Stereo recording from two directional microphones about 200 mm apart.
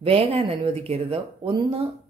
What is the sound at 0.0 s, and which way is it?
Speech, 30° right (ahead or behind).